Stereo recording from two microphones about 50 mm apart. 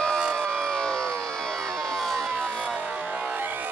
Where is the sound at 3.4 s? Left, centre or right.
Right.